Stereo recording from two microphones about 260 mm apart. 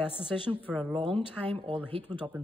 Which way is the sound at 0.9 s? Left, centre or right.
Right.